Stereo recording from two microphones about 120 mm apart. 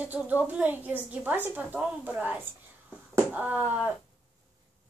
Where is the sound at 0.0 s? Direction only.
15° right (ahead or behind).